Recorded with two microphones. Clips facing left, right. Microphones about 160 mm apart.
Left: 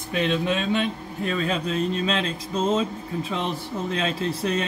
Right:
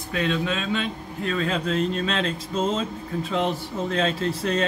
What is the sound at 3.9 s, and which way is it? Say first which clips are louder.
Speech: right 3 dB; 15° left (ahead or behind).